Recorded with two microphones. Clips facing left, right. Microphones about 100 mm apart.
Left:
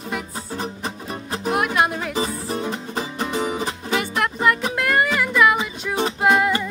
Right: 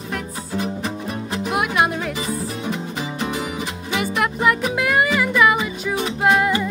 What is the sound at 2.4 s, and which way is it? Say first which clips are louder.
Music: even; 35° left (ahead or behind).